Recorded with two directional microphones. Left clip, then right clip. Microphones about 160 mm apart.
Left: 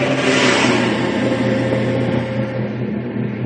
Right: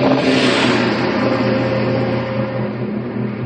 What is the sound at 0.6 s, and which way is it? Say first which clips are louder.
Vehicle: even; centre (ahead or behind).